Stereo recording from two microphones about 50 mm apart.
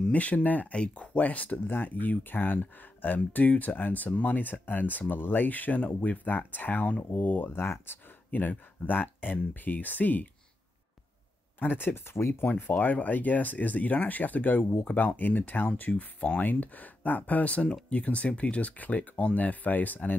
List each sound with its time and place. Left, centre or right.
0.1 s speech: left
11.6 s speech: left
12.4 s speech: left
14.9 s speech: left